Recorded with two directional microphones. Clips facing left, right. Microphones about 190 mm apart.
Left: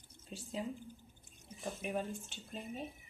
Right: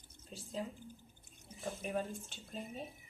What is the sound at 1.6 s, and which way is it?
Water, centre (ahead or behind).